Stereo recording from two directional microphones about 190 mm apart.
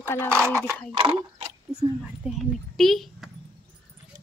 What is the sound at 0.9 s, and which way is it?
Speech, 30° right (ahead or behind).